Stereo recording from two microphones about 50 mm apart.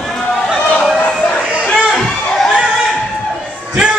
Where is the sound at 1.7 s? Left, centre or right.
Centre.